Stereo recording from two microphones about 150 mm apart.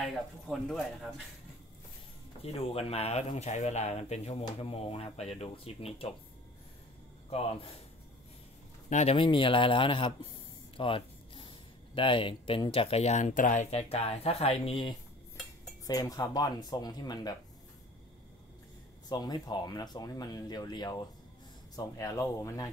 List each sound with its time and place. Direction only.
0.5 s speech: centre (ahead or behind)
2.4 s speech: 40° left (ahead or behind)
7.2 s speech: 40° left (ahead or behind)
8.8 s a man's voice: 50° left (ahead or behind)
9.1 s speech: 35° left (ahead or behind); by 13.7 s 60° left (ahead or behind)
13.7 s speech: 45° left (ahead or behind)
15.9 s speech: 25° left (ahead or behind)
19.0 s speech: 25° left (ahead or behind)